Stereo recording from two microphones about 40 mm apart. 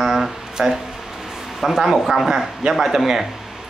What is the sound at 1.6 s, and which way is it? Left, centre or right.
Speech, centre.